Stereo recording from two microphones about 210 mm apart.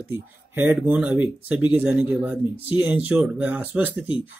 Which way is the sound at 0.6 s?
10° right (ahead or behind).